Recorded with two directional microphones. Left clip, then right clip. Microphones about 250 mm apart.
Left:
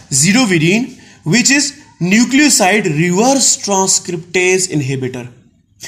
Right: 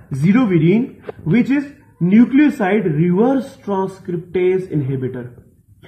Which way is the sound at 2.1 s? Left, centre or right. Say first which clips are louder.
Left 2 dB; left.